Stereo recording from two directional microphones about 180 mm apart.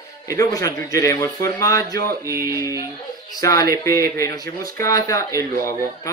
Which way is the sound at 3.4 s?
20° left (ahead or behind).